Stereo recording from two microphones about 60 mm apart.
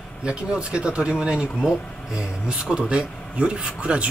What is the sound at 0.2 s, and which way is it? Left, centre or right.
Speech, centre.